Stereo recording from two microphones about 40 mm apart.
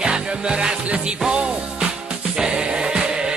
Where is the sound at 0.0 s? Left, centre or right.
Right.